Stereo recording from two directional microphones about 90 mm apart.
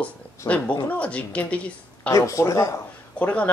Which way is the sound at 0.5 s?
50° left (ahead or behind).